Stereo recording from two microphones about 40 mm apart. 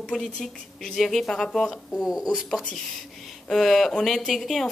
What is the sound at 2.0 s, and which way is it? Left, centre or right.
Speech, centre.